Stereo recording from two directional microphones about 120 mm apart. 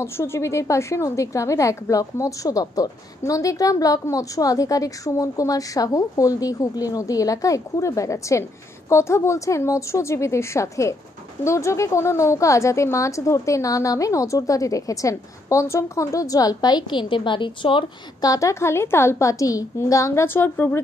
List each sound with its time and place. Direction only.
0.0 s a woman's voice: 25° left (ahead or behind); by 17.8 s 45° left (ahead or behind)
18.2 s a woman's voice: 30° left (ahead or behind)